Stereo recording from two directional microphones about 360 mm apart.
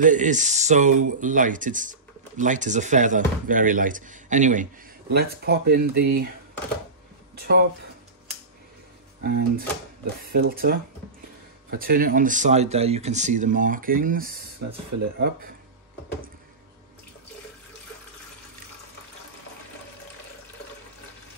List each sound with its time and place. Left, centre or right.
0.0 s speech: right
7.3 s speech: right
9.2 s speech: right